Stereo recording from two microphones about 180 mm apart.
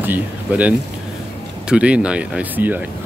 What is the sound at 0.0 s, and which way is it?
Speech, 10° right (ahead or behind).